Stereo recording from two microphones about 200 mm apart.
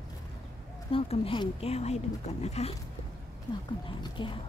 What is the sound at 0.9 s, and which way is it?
Speech, 30° left (ahead or behind).